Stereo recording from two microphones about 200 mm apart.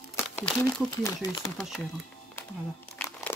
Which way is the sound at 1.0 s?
15° left (ahead or behind).